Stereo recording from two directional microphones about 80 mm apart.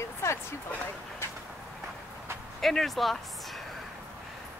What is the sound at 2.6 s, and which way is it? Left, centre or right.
Speech, centre.